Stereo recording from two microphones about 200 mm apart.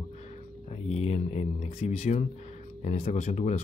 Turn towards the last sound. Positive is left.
turn(degrees=35)  # may be behind; listen again after turning